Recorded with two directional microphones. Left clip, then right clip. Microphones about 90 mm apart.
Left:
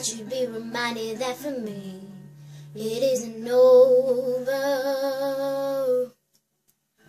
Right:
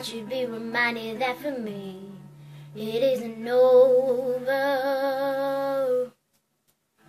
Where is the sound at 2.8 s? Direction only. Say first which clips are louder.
Even; 35° left (ahead or behind).